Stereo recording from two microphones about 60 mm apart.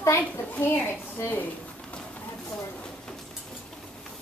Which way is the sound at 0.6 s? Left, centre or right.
Left.